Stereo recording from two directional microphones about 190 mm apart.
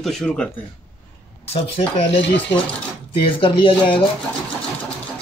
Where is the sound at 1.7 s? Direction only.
30° left (ahead or behind).